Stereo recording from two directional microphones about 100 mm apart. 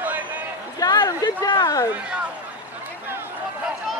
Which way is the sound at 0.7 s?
40° left (ahead or behind).